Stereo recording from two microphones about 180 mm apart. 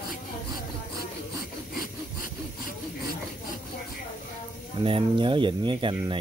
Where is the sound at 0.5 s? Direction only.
20° right (ahead or behind).